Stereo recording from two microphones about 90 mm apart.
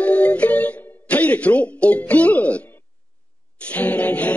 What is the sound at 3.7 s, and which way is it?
Music, 15° left (ahead or behind).